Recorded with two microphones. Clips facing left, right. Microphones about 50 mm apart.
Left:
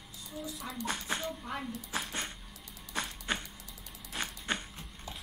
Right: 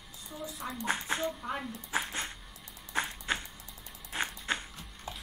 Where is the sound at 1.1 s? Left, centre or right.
Centre.